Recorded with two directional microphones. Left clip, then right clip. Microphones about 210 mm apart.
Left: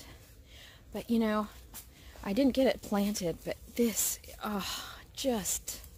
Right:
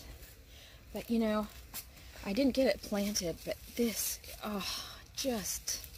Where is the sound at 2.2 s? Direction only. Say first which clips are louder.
Left 2 dB; 20° left (ahead or behind).